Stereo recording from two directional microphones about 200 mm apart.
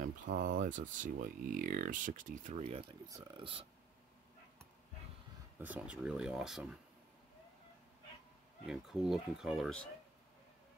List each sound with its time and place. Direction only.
0.0 s speech: 40° right (ahead or behind)
2.6 s speech: 25° right (ahead or behind)
5.6 s speech: 5° right (ahead or behind)
8.6 s speech: centre (ahead or behind)